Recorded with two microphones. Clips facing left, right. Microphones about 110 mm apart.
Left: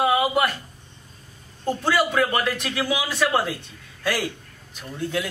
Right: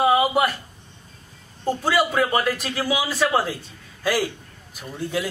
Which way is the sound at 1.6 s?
5° right (ahead or behind).